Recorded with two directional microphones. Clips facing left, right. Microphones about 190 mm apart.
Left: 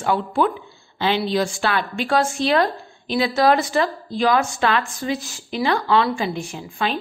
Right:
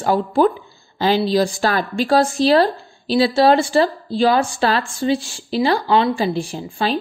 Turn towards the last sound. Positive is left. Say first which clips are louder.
# right 4 dB
turn(degrees=-35)  # may be behind; listen again after turning